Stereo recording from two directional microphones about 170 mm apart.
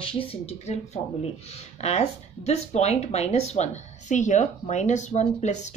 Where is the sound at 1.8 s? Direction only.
40° left (ahead or behind).